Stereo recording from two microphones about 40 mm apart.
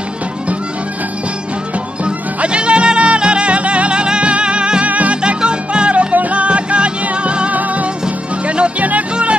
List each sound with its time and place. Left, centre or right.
2.0 s music: right
4.8 s music: right
5.2 s music: right